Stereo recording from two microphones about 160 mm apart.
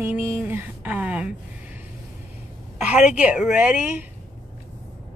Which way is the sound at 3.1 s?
10° right (ahead or behind).